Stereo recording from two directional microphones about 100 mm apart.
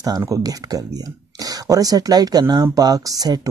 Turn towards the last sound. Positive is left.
turn(degrees=-40)  # may be behind; listen again after turning